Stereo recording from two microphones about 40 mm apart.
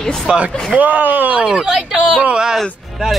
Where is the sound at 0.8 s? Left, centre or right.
Right.